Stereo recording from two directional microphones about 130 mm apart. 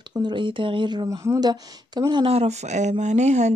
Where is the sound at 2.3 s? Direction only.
55° right (ahead or behind).